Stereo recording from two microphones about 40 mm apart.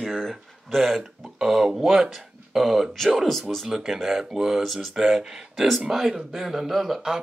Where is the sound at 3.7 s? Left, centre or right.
Centre.